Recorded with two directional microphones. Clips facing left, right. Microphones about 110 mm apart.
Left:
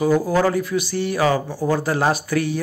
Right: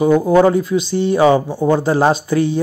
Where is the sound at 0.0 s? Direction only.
25° right (ahead or behind).